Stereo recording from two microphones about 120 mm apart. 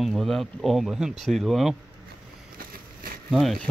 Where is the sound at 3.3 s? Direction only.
Centre (ahead or behind).